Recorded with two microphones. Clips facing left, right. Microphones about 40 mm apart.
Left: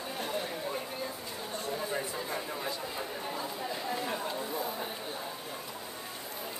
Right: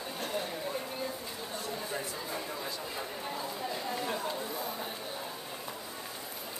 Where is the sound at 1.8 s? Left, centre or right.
Centre.